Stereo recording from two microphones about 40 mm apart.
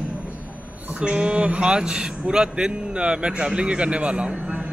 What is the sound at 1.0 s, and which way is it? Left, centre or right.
A man's voice, right.